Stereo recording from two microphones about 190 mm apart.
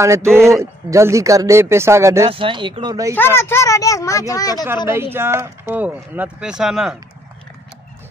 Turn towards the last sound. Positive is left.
turn(degrees=0)  # may be behind; listen again after turning